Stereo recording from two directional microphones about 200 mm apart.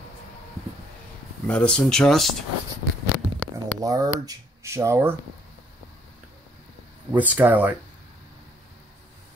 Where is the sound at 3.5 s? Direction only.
15° right (ahead or behind).